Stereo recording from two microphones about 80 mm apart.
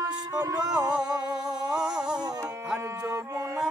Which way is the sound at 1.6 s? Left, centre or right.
Centre.